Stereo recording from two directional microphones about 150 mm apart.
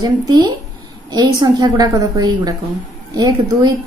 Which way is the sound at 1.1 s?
30° right (ahead or behind).